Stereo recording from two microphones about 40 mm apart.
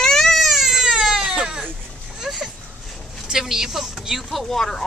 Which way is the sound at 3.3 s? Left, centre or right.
Centre.